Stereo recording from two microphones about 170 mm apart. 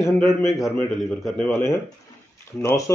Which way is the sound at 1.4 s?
15° left (ahead or behind).